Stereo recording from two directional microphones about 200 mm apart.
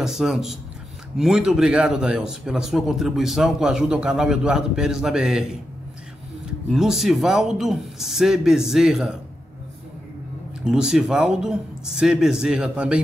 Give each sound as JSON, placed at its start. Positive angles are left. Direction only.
{"t": 0.0, "sound": "speech", "side_deg": 0}
{"t": 6.7, "sound": "speech", "side_deg": 0}
{"t": 10.6, "sound": "speech", "side_deg": 0}